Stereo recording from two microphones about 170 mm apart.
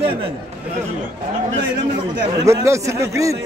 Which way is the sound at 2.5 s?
20° right (ahead or behind).